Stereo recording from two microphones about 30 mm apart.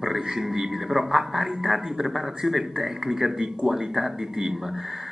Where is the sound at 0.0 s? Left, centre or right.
Centre.